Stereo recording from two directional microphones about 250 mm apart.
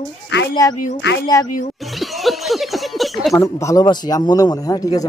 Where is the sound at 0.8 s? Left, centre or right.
Left.